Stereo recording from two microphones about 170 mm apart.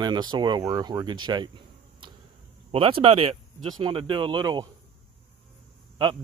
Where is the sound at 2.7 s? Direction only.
35° right (ahead or behind).